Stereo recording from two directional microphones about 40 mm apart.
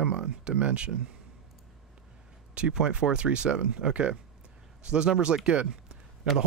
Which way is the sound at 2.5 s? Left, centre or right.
Right.